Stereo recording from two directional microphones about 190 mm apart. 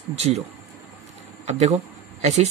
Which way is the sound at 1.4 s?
35° right (ahead or behind).